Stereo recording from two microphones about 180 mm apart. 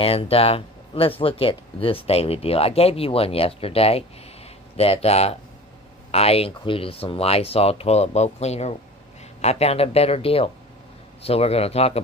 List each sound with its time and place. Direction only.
0.0 s speech: 30° left (ahead or behind)